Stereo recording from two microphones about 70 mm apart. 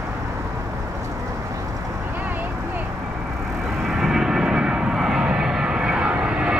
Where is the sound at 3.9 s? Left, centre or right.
Centre.